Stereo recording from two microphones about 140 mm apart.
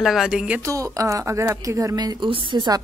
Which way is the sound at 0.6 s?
25° right (ahead or behind).